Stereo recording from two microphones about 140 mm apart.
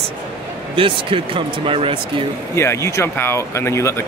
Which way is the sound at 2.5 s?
20° left (ahead or behind).